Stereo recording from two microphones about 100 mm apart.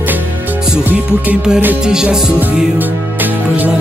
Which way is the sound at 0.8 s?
15° right (ahead or behind).